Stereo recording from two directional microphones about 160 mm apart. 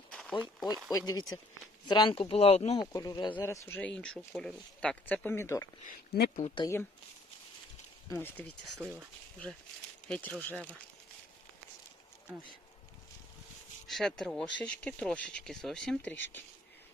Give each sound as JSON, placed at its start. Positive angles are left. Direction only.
{"t": 0.1, "sound": "a sound", "side_deg": 5}
{"t": 0.8, "sound": "speech", "side_deg": 25}
{"t": 2.8, "sound": "speech", "side_deg": 25}
{"t": 3.3, "sound": "speech", "side_deg": 15}
{"t": 5.9, "sound": "speech", "side_deg": 90}
{"t": 6.4, "sound": "speech", "side_deg": 30}
{"t": 8.1, "sound": "speech", "side_deg": 15}
{"t": 8.6, "sound": "speech", "side_deg": 0}
{"t": 10.0, "sound": "speech", "side_deg": 10}
{"t": 13.8, "sound": "speech", "side_deg": 0}